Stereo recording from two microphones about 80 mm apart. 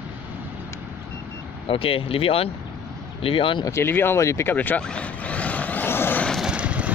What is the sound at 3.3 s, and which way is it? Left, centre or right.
Speech, left.